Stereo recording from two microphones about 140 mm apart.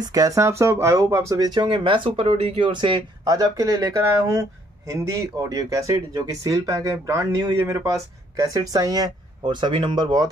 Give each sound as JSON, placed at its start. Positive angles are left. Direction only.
{"t": 0.0, "sound": "speech", "side_deg": -25}